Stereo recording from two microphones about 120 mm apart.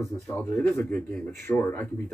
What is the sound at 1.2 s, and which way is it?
Speech, 15° left (ahead or behind).